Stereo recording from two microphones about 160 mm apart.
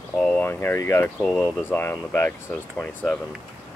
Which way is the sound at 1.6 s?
10° left (ahead or behind).